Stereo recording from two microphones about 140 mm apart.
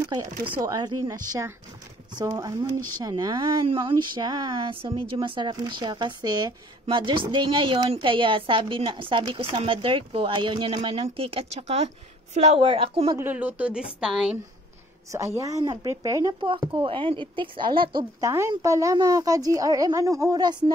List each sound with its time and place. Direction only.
0.0 s speech: 25° right (ahead or behind); by 13.2 s 40° right (ahead or behind)
13.2 s a woman's voice: 10° right (ahead or behind)
15.3 s speech: 25° right (ahead or behind)
16.4 s speech: 35° right (ahead or behind)
18.2 s speech: 20° right (ahead or behind)